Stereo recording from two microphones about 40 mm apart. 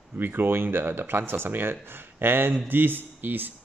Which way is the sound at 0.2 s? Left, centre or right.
Right.